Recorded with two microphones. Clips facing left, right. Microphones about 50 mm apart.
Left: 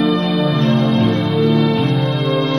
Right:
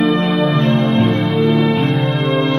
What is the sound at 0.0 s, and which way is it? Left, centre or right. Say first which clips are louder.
Music: right 1 dB; right.